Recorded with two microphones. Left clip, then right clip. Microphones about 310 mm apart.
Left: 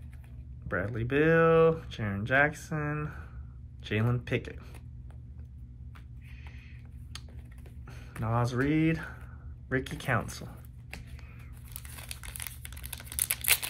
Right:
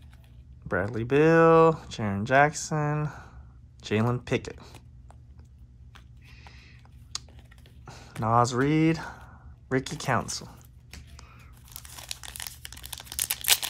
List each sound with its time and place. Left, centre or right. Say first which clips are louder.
0.7 s speech: right 5 dB; right
7.1 s typing: right 9 dB; right
7.8 s speech: right 8 dB; right
11.7 s crumpling: right 5 dB; centre